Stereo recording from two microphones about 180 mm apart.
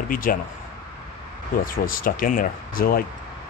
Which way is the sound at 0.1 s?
50° left (ahead or behind).